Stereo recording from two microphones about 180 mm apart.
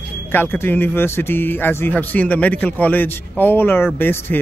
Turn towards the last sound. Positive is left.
turn(degrees=10)  # may be behind; listen again after turning